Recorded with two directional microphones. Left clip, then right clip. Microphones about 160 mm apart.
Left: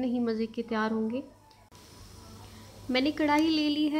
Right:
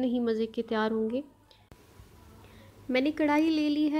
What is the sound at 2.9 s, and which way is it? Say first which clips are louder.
A woman's voice: even; 25° right (ahead or behind).